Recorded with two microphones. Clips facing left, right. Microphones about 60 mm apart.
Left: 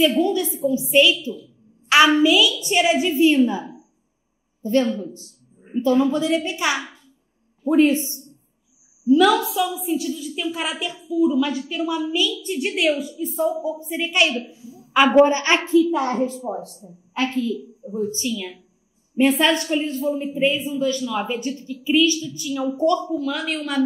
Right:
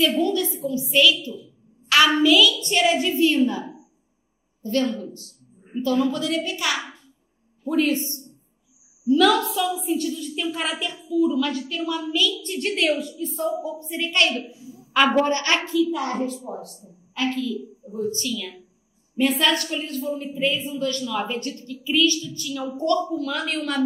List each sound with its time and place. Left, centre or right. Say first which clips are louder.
0.2 s a woman's voice: left 3 dB; centre
5.1 s a woman's voice: left 1 dB; left
9.0 s a woman's voice: left 2 dB; centre; by 20.6 s left
20.6 s a woman's voice: left 4 dB; centre